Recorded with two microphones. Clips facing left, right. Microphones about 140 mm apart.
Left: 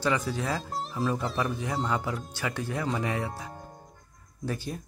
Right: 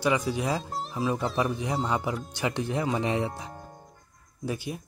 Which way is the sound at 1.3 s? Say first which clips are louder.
Right 2 dB; 15° right (ahead or behind).